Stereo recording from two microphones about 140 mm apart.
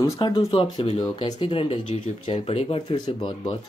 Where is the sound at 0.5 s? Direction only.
40° left (ahead or behind).